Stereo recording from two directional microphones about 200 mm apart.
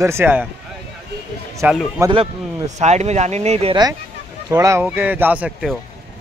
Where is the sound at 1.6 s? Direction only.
10° right (ahead or behind).